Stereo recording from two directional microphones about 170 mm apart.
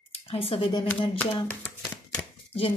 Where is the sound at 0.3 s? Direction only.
35° left (ahead or behind).